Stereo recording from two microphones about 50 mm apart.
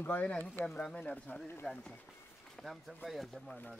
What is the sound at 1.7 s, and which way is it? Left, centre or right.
Speech, left.